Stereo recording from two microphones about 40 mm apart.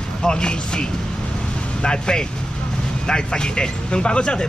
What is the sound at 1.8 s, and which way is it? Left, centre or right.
Speech, left.